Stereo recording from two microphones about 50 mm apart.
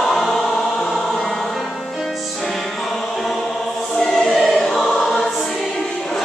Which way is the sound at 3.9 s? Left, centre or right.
Centre.